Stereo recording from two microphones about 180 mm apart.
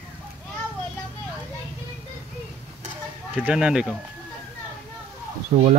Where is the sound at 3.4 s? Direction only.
5° right (ahead or behind).